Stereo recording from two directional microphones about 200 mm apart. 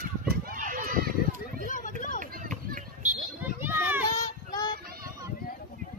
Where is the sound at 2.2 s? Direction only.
45° right (ahead or behind).